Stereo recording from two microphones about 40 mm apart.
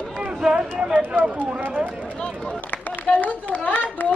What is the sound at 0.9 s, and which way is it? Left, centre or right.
Speech, right.